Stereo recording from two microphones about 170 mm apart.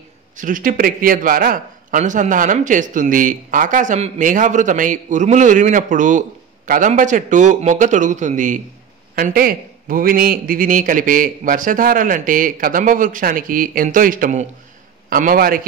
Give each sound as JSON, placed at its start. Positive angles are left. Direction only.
{"t": 0.4, "sound": "a man's voice", "side_deg": -55}
{"t": 9.1, "sound": "a man's voice", "side_deg": -60}